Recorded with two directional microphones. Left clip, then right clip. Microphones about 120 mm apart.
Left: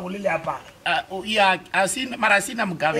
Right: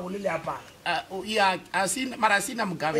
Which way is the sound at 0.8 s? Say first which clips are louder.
Left 5 dB; centre (ahead or behind).